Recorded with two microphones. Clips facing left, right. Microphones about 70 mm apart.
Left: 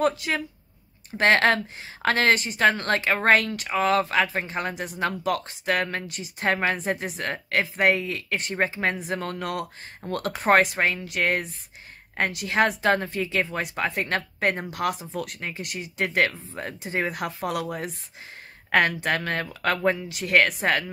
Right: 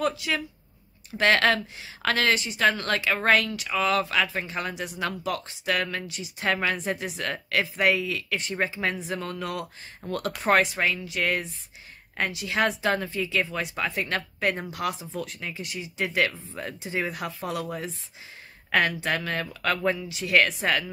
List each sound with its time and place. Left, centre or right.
0.0 s speech: left
1.1 s a woman's voice: left